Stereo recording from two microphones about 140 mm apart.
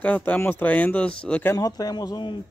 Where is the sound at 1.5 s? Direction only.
25° left (ahead or behind).